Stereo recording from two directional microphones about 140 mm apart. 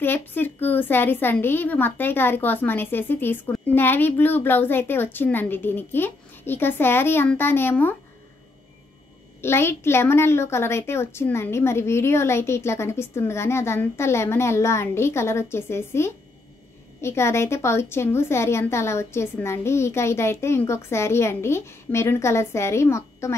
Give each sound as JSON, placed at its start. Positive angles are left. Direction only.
{"t": 0.0, "sound": "speech", "side_deg": 15}
{"t": 9.4, "sound": "a woman's voice", "side_deg": 15}